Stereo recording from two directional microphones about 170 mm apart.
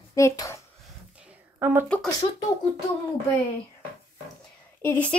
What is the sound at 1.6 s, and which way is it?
Speech, 10° right (ahead or behind).